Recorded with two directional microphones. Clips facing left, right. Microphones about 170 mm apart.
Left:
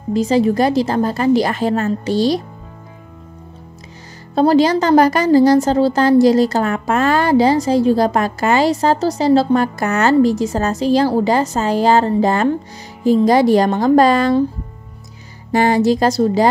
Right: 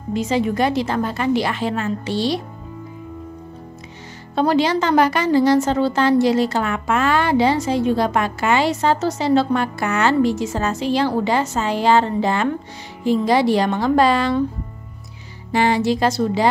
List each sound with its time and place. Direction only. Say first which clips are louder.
0.1 s a woman's voice: left 5 dB; 35° left (ahead or behind)
4.4 s a woman's voice: left 5 dB; 40° left (ahead or behind)
15.5 s a woman's voice: left 4 dB; 45° left (ahead or behind)